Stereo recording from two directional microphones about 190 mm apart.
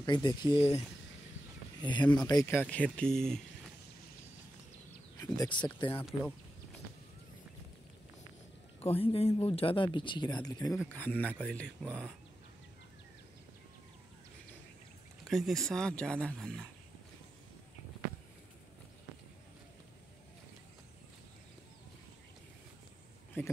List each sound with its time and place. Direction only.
0.0 s speech: 25° left (ahead or behind); by 3.4 s 5° left (ahead or behind)
5.2 s speech: 20° left (ahead or behind)
8.8 s speech: 30° left (ahead or behind)
10.9 s speech: 10° left (ahead or behind)
15.2 s speech: centre (ahead or behind)